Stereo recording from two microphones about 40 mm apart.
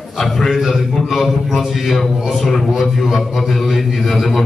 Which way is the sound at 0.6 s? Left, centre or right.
Centre.